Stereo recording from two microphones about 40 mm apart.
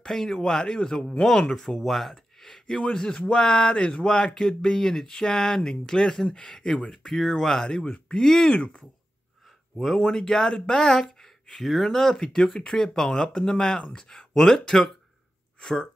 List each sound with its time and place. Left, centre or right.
0.0 s speech: centre
8.5 s speech: left
9.9 s speech: centre